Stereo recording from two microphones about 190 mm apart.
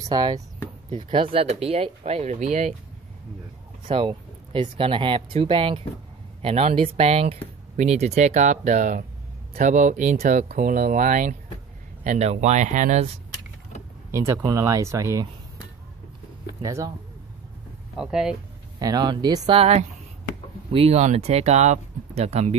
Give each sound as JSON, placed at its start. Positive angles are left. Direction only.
{"t": 0.1, "sound": "speech", "side_deg": -20}
{"t": 3.9, "sound": "speech", "side_deg": -30}
{"t": 14.1, "sound": "speech", "side_deg": -15}
{"t": 16.6, "sound": "speech", "side_deg": -15}
{"t": 17.9, "sound": "speech", "side_deg": -5}
{"t": 18.8, "sound": "speech", "side_deg": -20}